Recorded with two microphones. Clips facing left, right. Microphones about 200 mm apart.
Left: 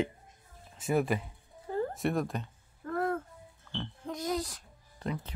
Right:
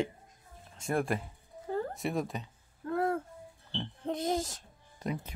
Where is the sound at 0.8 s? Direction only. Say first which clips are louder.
Left 2 dB; 5° left (ahead or behind).